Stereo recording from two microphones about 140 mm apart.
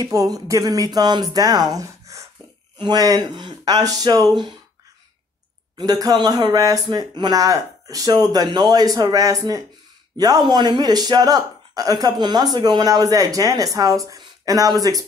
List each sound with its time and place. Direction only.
0.0 s speech: 25° right (ahead or behind)
5.8 s speech: 25° right (ahead or behind)